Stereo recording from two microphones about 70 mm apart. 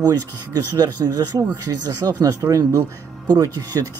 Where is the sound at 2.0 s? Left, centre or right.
Right.